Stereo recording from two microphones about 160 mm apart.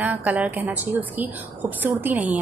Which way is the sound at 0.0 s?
10° right (ahead or behind).